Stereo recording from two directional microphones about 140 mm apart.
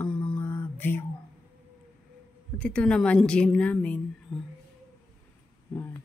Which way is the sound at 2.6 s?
5° left (ahead or behind).